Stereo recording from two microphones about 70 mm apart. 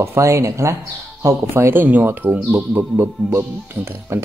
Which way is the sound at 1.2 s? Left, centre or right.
Right.